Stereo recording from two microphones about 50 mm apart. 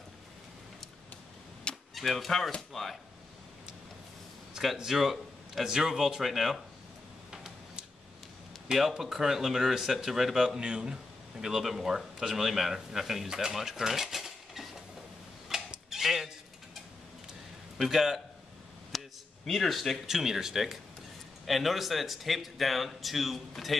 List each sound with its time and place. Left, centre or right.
2.0 s speech: centre
4.7 s speech: centre
7.2 s a sound: centre
8.7 s speech: centre
10.6 s speech: centre
11.4 s speech: centre
13.3 s cutlery: centre
17.8 s speech: centre
18.9 s a sound: centre
20.1 s speech: centre